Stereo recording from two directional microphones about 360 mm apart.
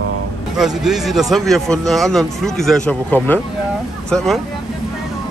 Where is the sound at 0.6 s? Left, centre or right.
Centre.